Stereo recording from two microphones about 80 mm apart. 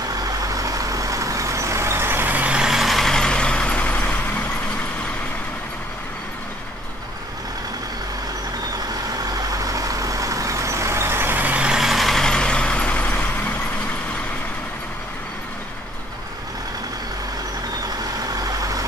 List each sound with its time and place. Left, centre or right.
0.1 s vehicle: right; by 4.2 s centre
8.7 s vehicle: right; by 13.2 s centre
18.3 s vehicle: right